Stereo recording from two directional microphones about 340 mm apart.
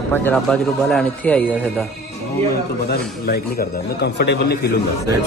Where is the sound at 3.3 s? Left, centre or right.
Left.